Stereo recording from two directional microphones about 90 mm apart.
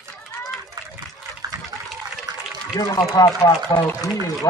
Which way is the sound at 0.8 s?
45° right (ahead or behind).